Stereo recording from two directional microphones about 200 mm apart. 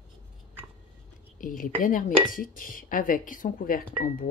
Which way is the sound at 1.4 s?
45° left (ahead or behind).